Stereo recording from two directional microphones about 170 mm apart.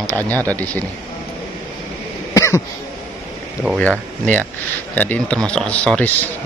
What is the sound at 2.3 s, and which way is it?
Cough, 20° left (ahead or behind).